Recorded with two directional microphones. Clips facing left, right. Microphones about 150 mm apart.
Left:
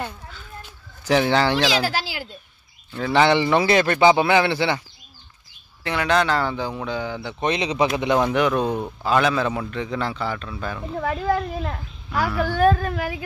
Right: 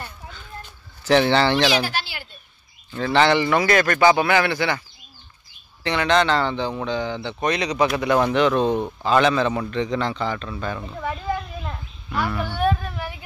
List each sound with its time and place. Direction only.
1.0 s speech: 5° left (ahead or behind)
1.7 s speech: 90° left
3.0 s a man's voice: 10° left (ahead or behind)
5.9 s speech: 5° left (ahead or behind)
7.3 s a man's voice: 25° left (ahead or behind)
8.2 s a man's voice: 10° left (ahead or behind)
11.0 s a sound: 85° left
12.7 s speech: 90° left